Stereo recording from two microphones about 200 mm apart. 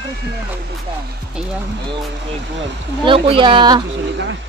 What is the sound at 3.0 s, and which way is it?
Speech, 25° right (ahead or behind).